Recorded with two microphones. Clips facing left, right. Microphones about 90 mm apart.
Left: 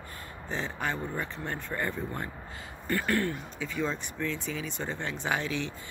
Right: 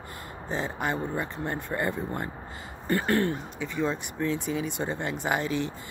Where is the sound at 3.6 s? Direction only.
15° right (ahead or behind).